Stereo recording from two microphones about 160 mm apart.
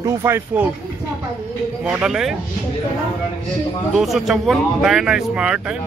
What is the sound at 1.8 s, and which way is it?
Speech, 5° right (ahead or behind).